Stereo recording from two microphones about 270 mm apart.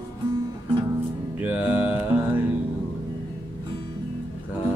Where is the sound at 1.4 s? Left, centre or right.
Centre.